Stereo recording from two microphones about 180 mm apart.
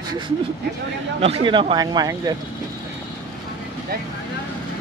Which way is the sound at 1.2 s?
30° right (ahead or behind).